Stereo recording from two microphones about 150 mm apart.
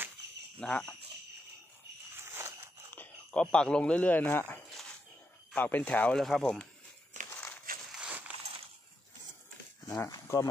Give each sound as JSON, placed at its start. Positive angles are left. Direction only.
{"t": 0.6, "sound": "speech", "side_deg": 5}
{"t": 2.1, "sound": "a sound", "side_deg": -15}
{"t": 3.0, "sound": "speech", "side_deg": 5}
{"t": 7.3, "sound": "crushing", "side_deg": 10}
{"t": 7.9, "sound": "a sound", "side_deg": -5}
{"t": 9.8, "sound": "speech", "side_deg": 20}